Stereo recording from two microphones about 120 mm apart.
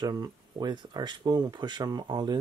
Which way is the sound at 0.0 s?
35° right (ahead or behind).